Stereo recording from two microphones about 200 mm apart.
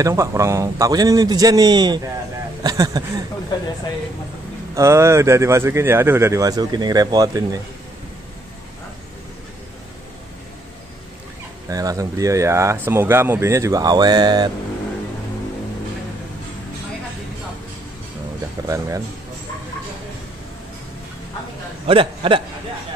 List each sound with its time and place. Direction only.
0.0 s speech: 15° right (ahead or behind)
4.7 s speech: 15° right (ahead or behind)
11.7 s speech: 15° right (ahead or behind)
18.7 s speech: 15° right (ahead or behind)
21.8 s a man's voice: 25° right (ahead or behind)